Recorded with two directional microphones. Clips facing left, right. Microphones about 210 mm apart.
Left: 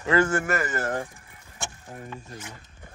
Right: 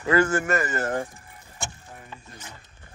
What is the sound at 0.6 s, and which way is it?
Speech, 15° right (ahead or behind).